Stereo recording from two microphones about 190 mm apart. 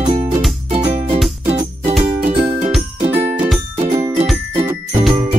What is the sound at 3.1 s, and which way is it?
Music, 10° right (ahead or behind).